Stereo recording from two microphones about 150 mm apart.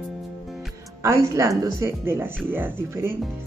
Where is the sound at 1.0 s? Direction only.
20° right (ahead or behind).